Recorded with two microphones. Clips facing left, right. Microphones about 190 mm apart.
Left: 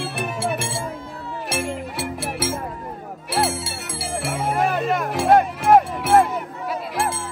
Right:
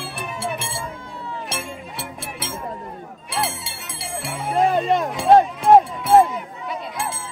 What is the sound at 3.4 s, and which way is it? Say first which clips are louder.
Music: left 4 dB; centre (ahead or behind).